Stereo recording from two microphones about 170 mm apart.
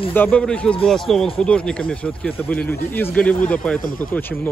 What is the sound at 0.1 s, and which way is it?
Speech, 10° left (ahead or behind).